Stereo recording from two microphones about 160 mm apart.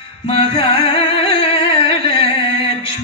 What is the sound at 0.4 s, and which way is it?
Music, 35° left (ahead or behind).